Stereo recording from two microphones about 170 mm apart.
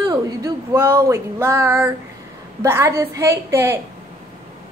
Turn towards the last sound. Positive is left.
turn(degrees=-15)  # may be behind; listen again after turning